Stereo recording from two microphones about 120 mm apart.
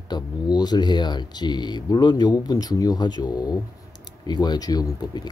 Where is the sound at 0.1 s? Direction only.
35° left (ahead or behind).